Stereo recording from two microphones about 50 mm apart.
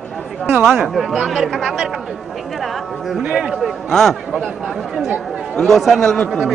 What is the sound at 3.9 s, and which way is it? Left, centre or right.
Speech, centre.